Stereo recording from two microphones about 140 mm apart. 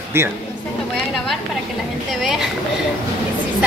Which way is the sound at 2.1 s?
Centre (ahead or behind).